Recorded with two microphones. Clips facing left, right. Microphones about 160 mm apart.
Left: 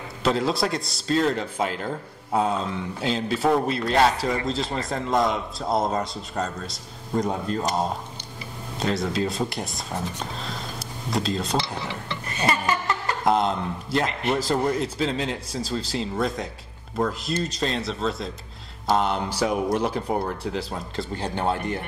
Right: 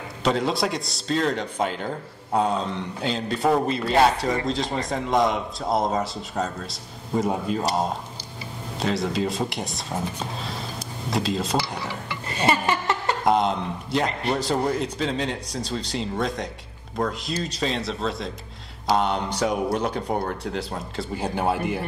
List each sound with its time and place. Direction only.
0.2 s a man's voice: centre (ahead or behind)
8.7 s a man's voice: centre (ahead or behind)
11.1 s a man's voice: centre (ahead or behind)
12.3 s chuckle: 25° right (ahead or behind)
13.2 s a man's voice: centre (ahead or behind)